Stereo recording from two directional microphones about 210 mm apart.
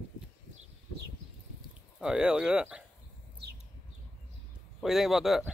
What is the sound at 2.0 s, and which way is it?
Speech, 5° right (ahead or behind).